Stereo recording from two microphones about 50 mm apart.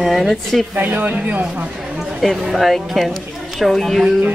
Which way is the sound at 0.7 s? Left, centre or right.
Right.